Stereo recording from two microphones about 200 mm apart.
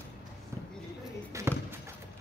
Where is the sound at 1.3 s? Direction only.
15° right (ahead or behind).